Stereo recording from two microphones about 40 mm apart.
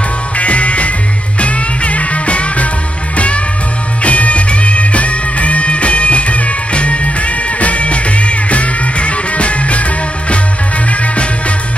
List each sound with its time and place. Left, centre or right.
0.4 s music: left
4.0 s music: left